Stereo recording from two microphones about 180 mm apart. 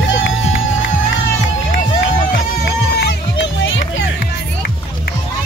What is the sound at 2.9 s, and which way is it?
Music, 75° left (ahead or behind).